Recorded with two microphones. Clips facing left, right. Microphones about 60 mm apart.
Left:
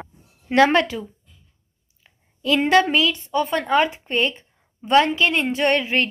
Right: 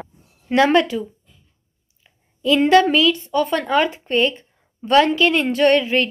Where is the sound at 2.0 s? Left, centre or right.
Left.